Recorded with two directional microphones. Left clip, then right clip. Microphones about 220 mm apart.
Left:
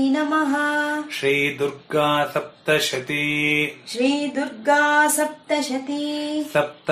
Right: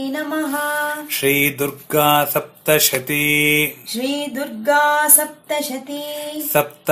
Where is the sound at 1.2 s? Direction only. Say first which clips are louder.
Right 3 dB; 45° right (ahead or behind).